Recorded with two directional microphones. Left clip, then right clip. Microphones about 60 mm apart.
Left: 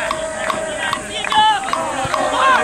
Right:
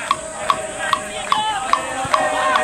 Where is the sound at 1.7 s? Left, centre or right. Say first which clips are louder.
Right 1 dB; right.